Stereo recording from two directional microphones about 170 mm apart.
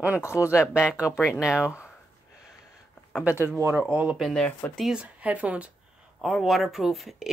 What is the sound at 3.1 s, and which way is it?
Speech, 10° right (ahead or behind).